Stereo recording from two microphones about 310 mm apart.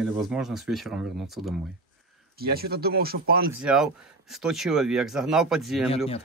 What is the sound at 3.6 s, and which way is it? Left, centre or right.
Speech, centre.